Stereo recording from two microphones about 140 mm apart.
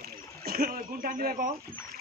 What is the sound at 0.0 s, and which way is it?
Speech, 90° right.